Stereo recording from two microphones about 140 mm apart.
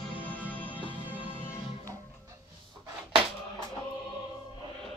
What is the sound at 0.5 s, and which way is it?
Music, 15° left (ahead or behind).